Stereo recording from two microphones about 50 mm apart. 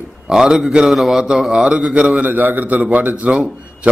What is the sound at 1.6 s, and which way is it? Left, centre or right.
A man's voice, right.